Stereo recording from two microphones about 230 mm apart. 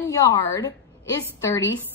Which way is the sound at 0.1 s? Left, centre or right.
Centre.